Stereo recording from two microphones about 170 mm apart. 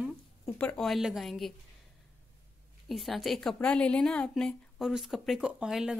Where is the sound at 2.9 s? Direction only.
Centre (ahead or behind).